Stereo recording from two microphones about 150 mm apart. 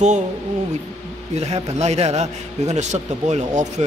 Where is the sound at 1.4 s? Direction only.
45° right (ahead or behind).